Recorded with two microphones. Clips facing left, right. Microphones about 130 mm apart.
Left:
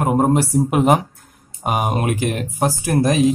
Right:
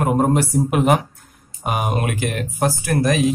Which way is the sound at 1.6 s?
40° left (ahead or behind).